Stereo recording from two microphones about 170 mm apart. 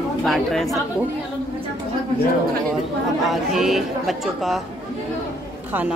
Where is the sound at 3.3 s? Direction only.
Centre (ahead or behind).